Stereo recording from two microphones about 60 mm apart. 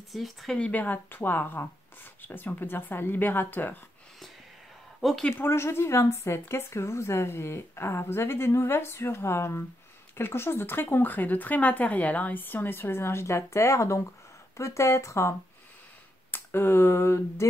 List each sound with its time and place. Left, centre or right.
0.1 s speech: centre
0.6 s speech: left
5.4 s speech: left
16.3 s speech: left